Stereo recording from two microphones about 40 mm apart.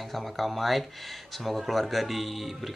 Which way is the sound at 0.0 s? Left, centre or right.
Centre.